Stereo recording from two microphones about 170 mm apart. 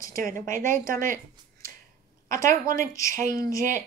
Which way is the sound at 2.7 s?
20° left (ahead or behind).